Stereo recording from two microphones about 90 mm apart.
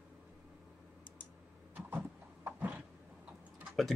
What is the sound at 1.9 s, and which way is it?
Horse, 20° right (ahead or behind).